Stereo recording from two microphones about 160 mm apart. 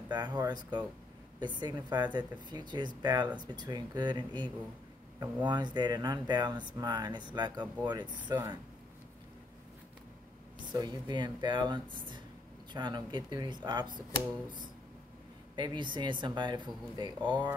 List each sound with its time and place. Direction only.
0.1 s speech: 25° right (ahead or behind)
10.7 s speech: 25° right (ahead or behind)
15.5 s speech: 30° right (ahead or behind)